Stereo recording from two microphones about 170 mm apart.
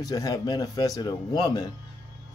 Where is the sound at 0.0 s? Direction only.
20° left (ahead or behind).